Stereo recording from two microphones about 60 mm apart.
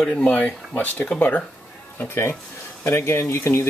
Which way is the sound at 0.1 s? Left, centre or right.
Left.